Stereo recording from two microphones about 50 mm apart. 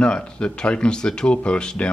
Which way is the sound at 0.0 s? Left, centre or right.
Centre.